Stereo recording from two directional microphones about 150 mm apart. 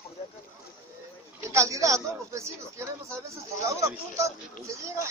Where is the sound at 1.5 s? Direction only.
20° right (ahead or behind).